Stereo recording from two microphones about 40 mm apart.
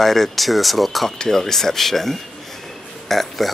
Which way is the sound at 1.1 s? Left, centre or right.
Centre.